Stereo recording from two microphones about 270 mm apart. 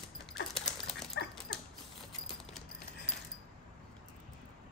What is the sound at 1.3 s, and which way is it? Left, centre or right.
Dog, centre.